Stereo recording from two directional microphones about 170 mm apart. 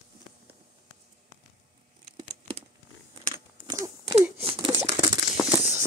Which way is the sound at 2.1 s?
30° right (ahead or behind).